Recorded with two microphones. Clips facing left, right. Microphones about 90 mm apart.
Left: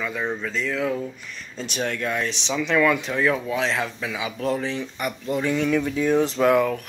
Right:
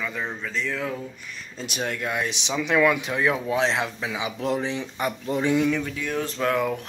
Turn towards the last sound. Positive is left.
turn(degrees=15)  # may be behind; listen again after turning